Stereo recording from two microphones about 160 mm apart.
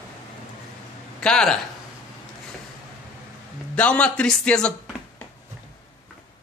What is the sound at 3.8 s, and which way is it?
Speech, 10° left (ahead or behind).